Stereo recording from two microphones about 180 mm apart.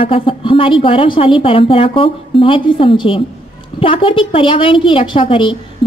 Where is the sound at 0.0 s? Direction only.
30° left (ahead or behind).